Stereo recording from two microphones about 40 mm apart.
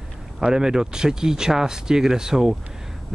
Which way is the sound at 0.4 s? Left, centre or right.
Centre.